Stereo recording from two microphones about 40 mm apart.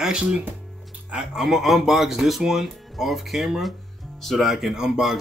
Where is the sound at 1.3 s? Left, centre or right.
Centre.